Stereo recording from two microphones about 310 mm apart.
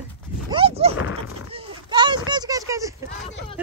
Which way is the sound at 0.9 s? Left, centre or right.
Left.